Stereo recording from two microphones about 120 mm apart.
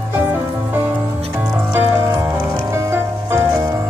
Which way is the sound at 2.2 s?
20° right (ahead or behind).